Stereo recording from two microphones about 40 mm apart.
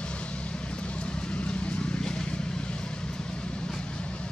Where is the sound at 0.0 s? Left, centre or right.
Left.